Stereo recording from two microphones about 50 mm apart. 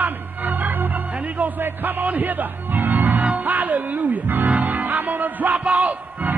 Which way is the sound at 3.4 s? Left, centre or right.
Right.